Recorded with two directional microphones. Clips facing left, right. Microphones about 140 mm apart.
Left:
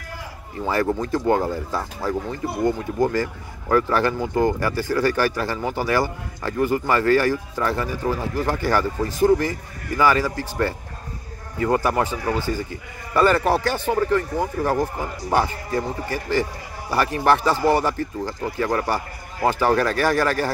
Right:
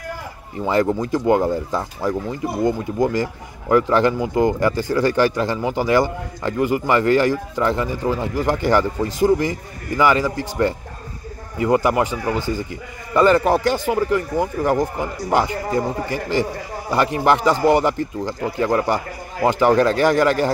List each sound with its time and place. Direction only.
0.8 s speech: 15° right (ahead or behind)